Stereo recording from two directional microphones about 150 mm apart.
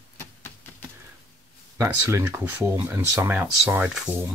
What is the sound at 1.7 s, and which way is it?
Speech, 20° right (ahead or behind).